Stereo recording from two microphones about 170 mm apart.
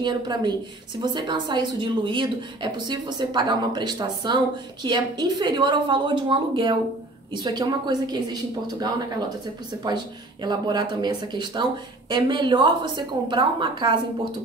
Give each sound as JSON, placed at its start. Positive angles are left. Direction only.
{"t": 0.0, "sound": "speech", "side_deg": -25}